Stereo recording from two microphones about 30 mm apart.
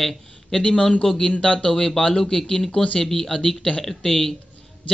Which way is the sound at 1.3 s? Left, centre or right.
Left.